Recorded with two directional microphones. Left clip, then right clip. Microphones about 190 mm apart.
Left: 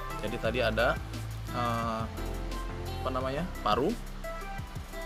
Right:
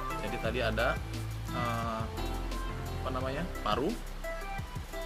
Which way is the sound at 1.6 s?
35° left (ahead or behind).